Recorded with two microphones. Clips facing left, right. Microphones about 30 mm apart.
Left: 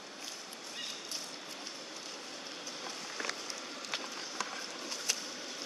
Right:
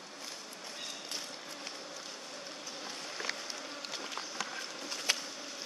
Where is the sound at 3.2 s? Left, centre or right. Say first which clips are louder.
Even; centre.